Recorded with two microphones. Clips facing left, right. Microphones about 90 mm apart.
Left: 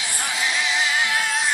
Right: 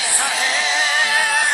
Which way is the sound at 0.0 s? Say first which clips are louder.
Right 4 dB; 80° right.